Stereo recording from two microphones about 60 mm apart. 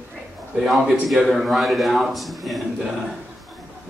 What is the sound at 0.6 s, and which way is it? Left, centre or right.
A man's voice, centre.